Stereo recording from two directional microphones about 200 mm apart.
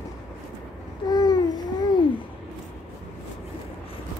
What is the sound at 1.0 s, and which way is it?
Babbling, 20° left (ahead or behind).